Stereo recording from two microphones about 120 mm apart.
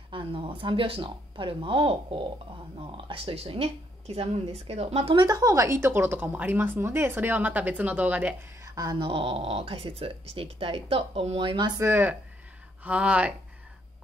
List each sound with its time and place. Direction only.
0.1 s speech: 45° right (ahead or behind)
5.1 s a woman's voice: 35° right (ahead or behind); by 8.4 s 15° right (ahead or behind)
8.6 s a sound: 30° right (ahead or behind)
9.0 s speech: 55° right (ahead or behind)
11.8 s a woman's voice: 15° right (ahead or behind)